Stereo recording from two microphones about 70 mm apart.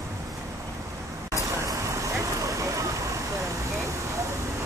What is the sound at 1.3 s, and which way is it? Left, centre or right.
Vehicle, right.